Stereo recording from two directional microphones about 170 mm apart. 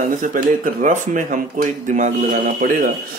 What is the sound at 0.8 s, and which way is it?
Speech, 45° right (ahead or behind).